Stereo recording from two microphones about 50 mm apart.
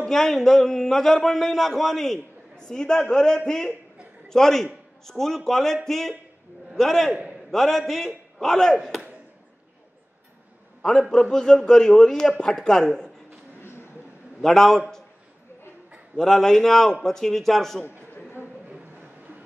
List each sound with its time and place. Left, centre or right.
0.1 s a man's voice: centre
10.8 s a man's voice: centre
13.6 s a sound: left
14.4 s a man's voice: centre
16.2 s a man's voice: centre